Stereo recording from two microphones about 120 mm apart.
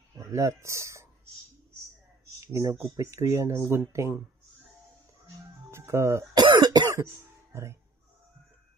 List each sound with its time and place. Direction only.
0.1 s speech: 25° right (ahead or behind)
2.4 s speech: 25° right (ahead or behind)
5.7 s music: 25° right (ahead or behind)
6.4 s cough: 35° right (ahead or behind)
7.5 s speech: 25° right (ahead or behind)